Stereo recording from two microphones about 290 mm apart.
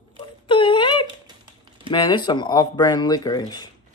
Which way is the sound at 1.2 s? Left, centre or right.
Centre.